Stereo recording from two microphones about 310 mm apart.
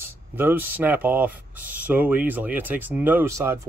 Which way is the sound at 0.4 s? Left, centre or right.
Centre.